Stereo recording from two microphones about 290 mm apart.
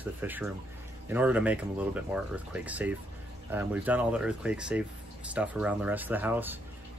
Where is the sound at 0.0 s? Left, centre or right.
Centre.